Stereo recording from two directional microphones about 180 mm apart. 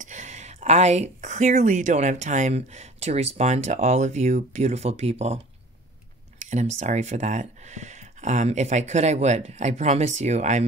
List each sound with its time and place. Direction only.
0.0 s speech: 45° right (ahead or behind)
6.4 s speech: 40° right (ahead or behind)